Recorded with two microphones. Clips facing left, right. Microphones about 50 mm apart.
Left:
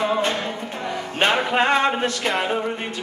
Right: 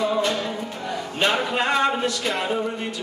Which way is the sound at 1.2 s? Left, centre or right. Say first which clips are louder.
Left 3 dB; left.